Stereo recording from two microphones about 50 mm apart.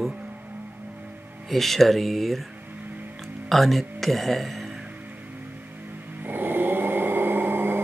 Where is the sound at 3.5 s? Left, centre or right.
Centre.